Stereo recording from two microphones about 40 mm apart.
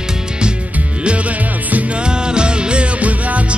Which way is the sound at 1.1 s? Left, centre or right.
Right.